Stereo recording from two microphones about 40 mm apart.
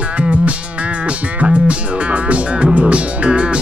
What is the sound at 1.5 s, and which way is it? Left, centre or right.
Music, right.